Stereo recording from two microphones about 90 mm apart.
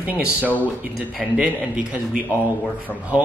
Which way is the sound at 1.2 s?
5° left (ahead or behind).